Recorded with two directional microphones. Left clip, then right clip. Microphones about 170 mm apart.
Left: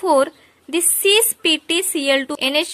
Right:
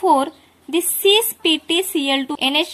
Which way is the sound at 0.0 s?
45° left (ahead or behind).